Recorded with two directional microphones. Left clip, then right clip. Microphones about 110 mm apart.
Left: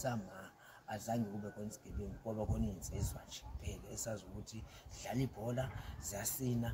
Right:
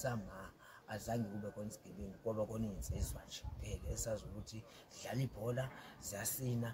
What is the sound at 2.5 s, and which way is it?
Speech, 25° right (ahead or behind).